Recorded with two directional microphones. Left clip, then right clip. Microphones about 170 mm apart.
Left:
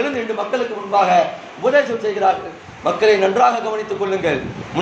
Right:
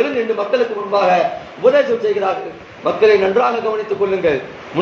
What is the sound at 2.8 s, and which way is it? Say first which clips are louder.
Speech: right 2 dB; 30° left (ahead or behind).